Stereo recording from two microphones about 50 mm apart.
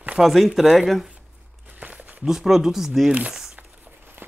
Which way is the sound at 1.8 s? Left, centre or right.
Right.